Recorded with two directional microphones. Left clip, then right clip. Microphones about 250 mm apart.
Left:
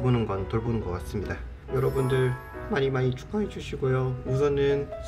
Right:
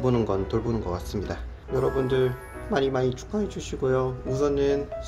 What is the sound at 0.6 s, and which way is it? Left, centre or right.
Speech, centre.